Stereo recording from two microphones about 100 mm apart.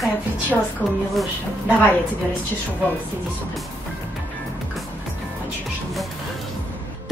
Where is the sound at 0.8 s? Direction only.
20° left (ahead or behind).